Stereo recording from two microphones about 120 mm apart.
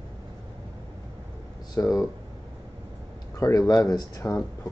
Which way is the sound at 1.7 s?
35° left (ahead or behind).